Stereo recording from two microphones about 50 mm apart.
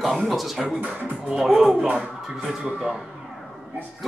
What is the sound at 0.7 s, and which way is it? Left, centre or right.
Speech, right.